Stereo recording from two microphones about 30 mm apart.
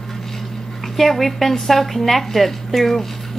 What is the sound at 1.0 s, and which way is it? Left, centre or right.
A woman's voice, centre.